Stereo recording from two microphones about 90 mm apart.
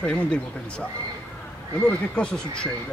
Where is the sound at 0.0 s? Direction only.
15° left (ahead or behind).